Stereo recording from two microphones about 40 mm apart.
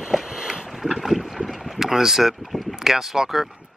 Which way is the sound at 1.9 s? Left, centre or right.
Centre.